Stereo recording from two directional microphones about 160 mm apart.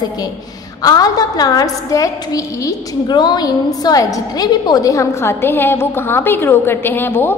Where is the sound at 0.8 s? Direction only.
25° left (ahead or behind).